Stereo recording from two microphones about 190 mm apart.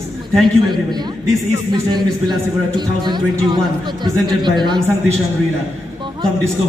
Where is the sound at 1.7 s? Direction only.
25° right (ahead or behind).